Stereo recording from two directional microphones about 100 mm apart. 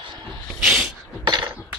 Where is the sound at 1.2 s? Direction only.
50° right (ahead or behind).